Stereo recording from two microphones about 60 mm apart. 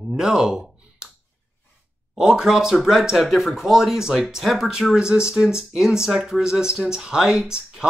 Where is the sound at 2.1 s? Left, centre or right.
Centre.